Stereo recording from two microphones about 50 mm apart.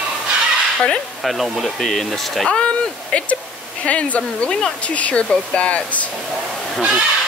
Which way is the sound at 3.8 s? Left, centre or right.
Left.